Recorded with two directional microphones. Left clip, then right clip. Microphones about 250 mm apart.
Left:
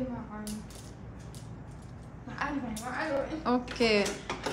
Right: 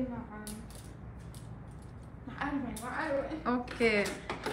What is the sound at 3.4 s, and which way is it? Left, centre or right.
A woman's voice, centre.